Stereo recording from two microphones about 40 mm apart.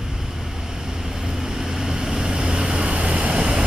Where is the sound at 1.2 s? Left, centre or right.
Centre.